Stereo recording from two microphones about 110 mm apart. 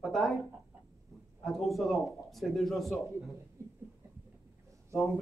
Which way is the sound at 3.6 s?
25° right (ahead or behind).